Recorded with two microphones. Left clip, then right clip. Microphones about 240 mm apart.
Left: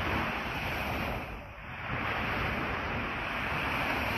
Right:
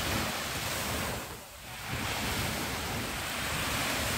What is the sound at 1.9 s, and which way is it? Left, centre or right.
Waves, right.